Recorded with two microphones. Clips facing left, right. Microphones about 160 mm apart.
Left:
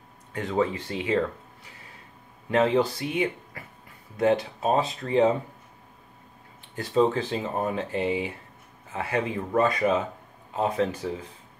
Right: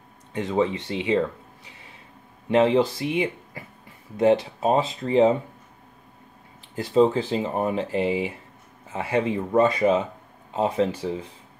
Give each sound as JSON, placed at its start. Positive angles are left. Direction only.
{"t": 0.3, "sound": "speech", "side_deg": -20}
{"t": 2.5, "sound": "speech", "side_deg": -25}
{"t": 6.7, "sound": "speech", "side_deg": -30}